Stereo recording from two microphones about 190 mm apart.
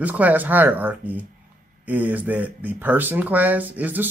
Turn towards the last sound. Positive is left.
turn(degrees=-10)  # may be behind; listen again after turning